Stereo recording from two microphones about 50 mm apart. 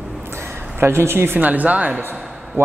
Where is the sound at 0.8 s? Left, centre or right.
Right.